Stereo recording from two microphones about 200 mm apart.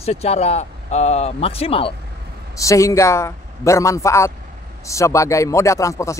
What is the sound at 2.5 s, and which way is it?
Speech, 15° left (ahead or behind).